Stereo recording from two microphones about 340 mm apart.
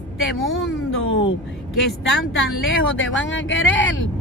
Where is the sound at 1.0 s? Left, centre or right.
Left.